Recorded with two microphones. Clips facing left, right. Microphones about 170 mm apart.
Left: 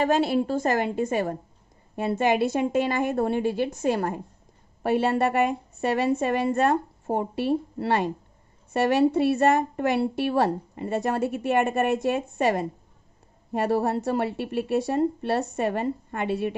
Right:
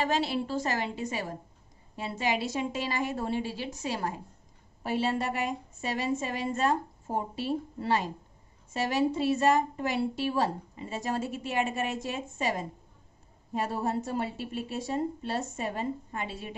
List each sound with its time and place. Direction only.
0.0 s a woman's voice: 50° left (ahead or behind)